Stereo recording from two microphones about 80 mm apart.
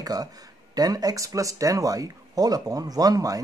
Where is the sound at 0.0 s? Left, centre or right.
Right.